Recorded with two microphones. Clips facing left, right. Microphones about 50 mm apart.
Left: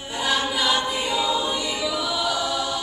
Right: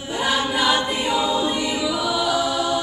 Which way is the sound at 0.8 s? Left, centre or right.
Centre.